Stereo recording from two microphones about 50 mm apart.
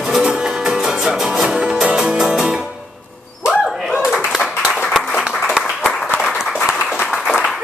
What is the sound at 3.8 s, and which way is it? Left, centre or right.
Clapping, centre.